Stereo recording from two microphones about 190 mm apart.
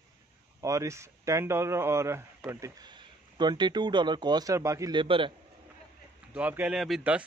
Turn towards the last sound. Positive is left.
turn(degrees=-5)  # may be behind; listen again after turning